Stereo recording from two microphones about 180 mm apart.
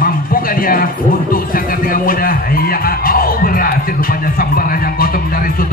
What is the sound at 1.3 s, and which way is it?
Music, 50° left (ahead or behind).